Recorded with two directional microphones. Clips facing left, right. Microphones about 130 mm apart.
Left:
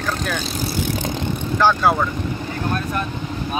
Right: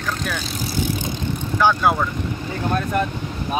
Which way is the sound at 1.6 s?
15° right (ahead or behind).